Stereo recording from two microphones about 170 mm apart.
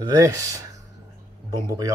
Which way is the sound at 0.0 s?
20° right (ahead or behind).